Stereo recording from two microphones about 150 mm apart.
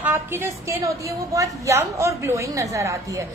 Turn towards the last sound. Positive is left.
turn(degrees=-20)  # may be behind; listen again after turning